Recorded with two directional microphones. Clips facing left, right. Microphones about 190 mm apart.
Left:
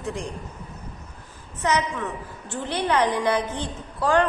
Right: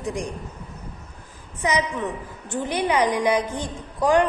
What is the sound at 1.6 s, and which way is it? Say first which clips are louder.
A woman's voice: right 1 dB; 15° right (ahead or behind).